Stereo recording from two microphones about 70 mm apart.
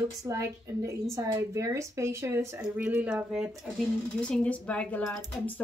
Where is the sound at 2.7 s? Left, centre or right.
Centre.